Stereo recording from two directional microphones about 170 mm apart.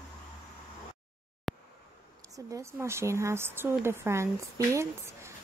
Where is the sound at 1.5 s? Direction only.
Centre (ahead or behind).